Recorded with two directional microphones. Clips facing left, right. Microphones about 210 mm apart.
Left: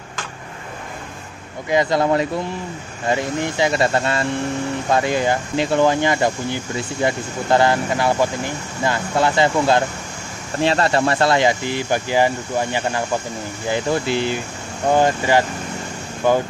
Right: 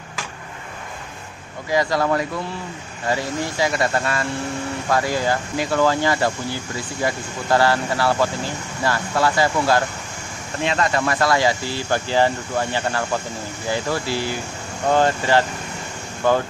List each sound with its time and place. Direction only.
1.7 s speech: 20° left (ahead or behind)
10.6 s speech: 35° left (ahead or behind); by 16.4 s 15° left (ahead or behind)